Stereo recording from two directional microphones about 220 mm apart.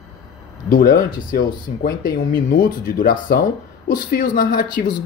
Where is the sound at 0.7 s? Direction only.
45° left (ahead or behind).